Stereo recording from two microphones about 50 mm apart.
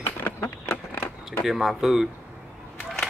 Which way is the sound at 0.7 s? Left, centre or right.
Left.